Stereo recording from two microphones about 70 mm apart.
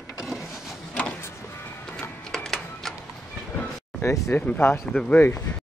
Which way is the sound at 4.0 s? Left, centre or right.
Left.